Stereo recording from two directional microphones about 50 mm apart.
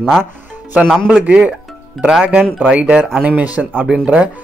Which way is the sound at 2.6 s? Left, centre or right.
Right.